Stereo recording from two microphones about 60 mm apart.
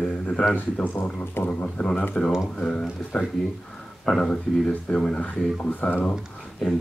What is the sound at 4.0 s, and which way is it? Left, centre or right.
Speech, centre.